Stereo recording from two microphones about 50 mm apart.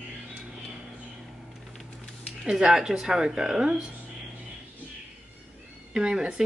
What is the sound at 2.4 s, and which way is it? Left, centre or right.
Speech, centre.